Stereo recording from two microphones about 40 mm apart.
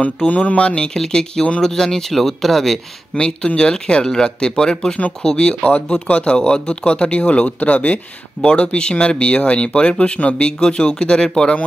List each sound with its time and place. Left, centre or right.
0.3 s speech: left; by 2.8 s centre
3.2 s speech: left
8.5 s speech: left